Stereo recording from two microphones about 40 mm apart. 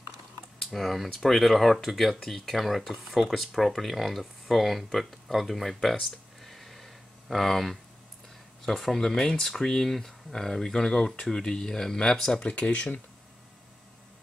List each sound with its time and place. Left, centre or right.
0.6 s speech: centre
6.0 s a sound: centre
8.6 s speech: centre
9.0 s speech: centre
12.4 s speech: left